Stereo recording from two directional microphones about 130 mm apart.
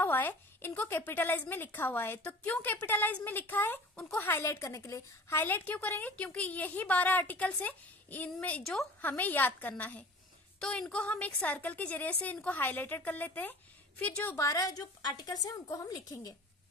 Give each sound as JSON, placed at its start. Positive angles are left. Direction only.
{"t": 0.0, "sound": "a woman's voice", "side_deg": 15}
{"t": 14.3, "sound": "a woman's voice", "side_deg": 25}